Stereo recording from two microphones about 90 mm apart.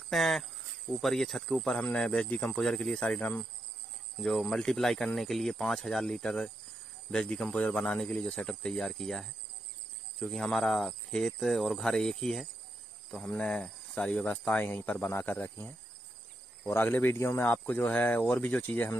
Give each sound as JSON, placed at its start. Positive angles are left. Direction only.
{"t": 0.1, "sound": "speech", "side_deg": 0}
{"t": 4.2, "sound": "speech", "side_deg": 5}